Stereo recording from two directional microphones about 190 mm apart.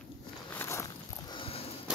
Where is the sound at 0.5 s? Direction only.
15° left (ahead or behind).